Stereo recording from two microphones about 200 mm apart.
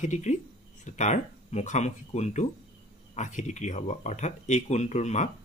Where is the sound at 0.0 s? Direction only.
35° left (ahead or behind).